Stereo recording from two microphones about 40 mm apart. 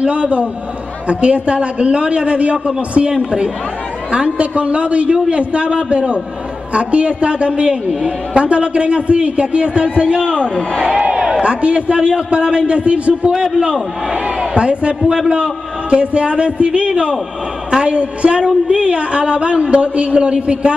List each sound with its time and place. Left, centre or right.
0.0 s a man's voice: right
3.1 s a man's voice: right
10.9 s a sound: right
11.4 s a man's voice: right
17.9 s a man's voice: right